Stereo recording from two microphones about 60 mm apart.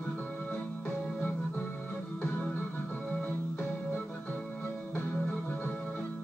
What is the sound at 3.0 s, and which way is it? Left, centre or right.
Organ, centre.